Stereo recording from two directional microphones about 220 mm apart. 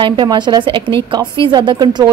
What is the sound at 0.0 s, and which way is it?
A woman's voice, 20° right (ahead or behind).